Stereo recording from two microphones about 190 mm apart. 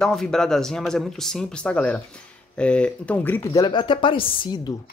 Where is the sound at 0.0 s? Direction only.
5° left (ahead or behind).